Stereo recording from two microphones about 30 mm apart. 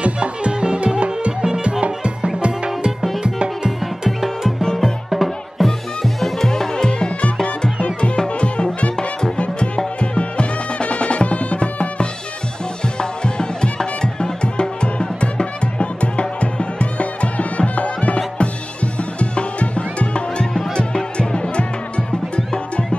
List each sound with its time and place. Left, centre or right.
0.0 s music: right
5.1 s music: centre
6.7 s music: left
8.3 s music: left
9.9 s music: left
12.9 s music: left